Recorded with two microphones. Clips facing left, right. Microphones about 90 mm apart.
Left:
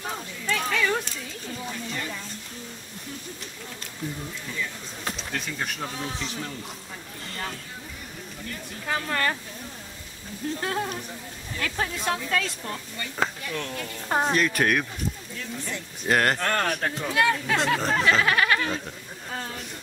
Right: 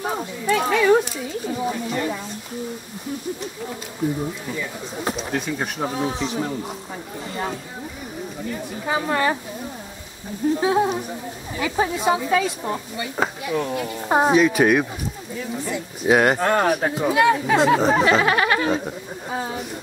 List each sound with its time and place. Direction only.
0.0 s a sound: 25° right (ahead or behind)
0.5 s speech: 15° right (ahead or behind)
5.1 s speech: 15° right (ahead or behind)
8.5 s speech: 10° right (ahead or behind)
10.5 s speech: 10° right (ahead or behind)
18.2 s goat: 20° right (ahead or behind)
19.3 s speech: 15° right (ahead or behind)